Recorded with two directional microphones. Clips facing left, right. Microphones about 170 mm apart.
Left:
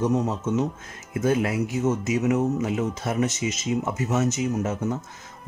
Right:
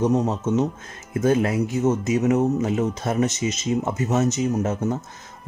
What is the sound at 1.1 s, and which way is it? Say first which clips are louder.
Speech: right 3 dB; 40° right (ahead or behind).